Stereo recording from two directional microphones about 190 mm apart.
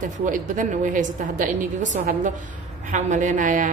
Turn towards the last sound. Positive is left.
turn(degrees=-45)  # may be behind; listen again after turning